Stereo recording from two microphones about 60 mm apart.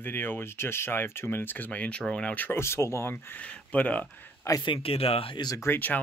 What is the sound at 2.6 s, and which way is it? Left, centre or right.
Speech, left.